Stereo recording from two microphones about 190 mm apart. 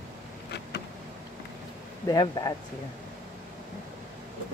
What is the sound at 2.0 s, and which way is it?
Speech, 20° left (ahead or behind).